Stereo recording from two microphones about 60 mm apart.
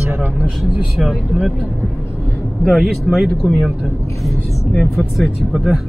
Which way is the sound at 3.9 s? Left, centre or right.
Left.